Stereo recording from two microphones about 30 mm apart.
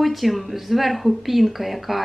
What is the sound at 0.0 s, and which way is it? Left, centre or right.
Speech, centre.